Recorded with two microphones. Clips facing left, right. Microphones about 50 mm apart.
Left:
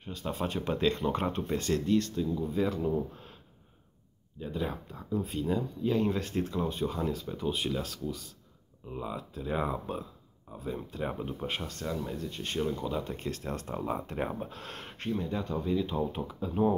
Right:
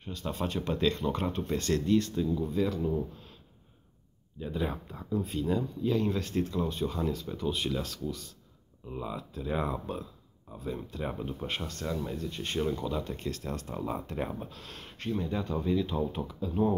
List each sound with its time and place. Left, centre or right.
0.0 s speech: centre
1.9 s speech: centre
2.2 s speech: centre
4.4 s speech: centre
5.1 s speech: centre
5.9 s speech: left; by 12.8 s centre
12.8 s speech: centre
14.5 s speech: left
15.1 s speech: centre
15.8 s speech: centre
16.3 s speech: left